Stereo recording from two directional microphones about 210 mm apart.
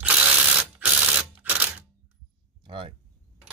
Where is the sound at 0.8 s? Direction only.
5° right (ahead or behind).